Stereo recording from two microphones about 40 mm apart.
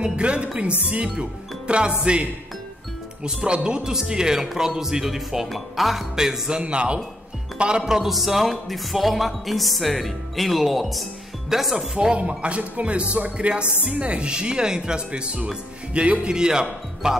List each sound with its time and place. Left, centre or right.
0.0 s speech: right
3.3 s speech: centre
6.1 s speech: centre
6.6 s a man's voice: right
7.8 s speech: centre
11.7 s speech: centre
12.1 s speech: right